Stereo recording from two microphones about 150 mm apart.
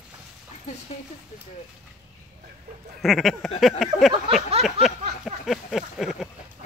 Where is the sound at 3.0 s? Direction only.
Centre (ahead or behind).